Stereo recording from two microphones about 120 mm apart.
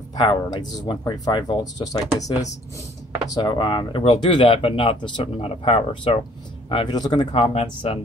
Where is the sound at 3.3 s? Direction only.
40° left (ahead or behind).